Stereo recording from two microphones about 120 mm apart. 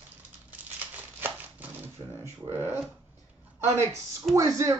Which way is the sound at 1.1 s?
15° right (ahead or behind).